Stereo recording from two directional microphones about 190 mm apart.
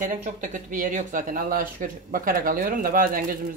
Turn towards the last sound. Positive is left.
turn(degrees=-50)  # may be behind; listen again after turning